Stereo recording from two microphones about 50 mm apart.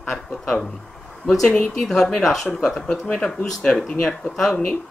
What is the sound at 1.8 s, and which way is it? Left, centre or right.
Speech, centre.